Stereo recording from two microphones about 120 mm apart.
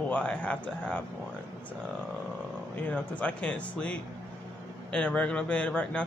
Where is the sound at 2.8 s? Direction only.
10° left (ahead or behind).